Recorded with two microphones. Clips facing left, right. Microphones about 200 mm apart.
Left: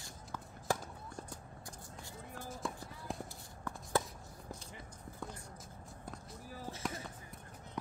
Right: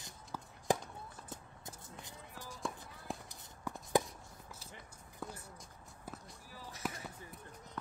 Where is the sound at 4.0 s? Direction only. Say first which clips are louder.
Right 3 dB; 15° right (ahead or behind).